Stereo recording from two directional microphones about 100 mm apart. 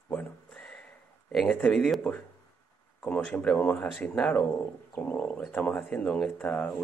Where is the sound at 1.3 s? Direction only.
5° left (ahead or behind).